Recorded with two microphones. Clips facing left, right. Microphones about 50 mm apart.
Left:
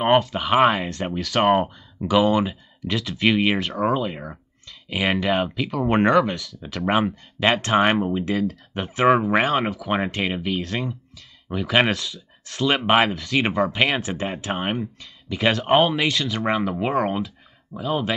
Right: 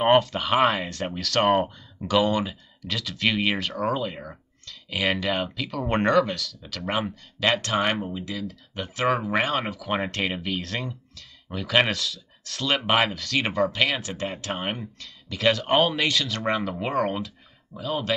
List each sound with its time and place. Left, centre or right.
0.0 s speech: centre
6.9 s speech: left
8.3 s speech: left
8.9 s speech: left
9.2 s speech: centre